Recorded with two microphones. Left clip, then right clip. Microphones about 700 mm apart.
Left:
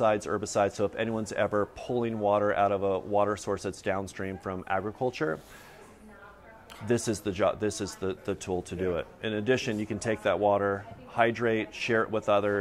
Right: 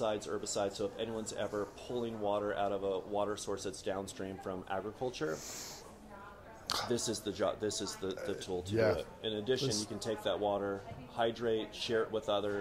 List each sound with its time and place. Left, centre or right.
0.0 s speech: left
2.2 s speech: left
6.9 s speech: left
9.2 s speech: left